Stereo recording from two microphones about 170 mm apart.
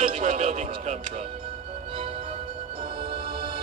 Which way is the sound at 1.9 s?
35° right (ahead or behind).